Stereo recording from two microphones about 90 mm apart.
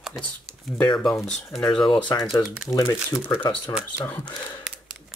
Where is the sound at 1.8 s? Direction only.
60° left (ahead or behind).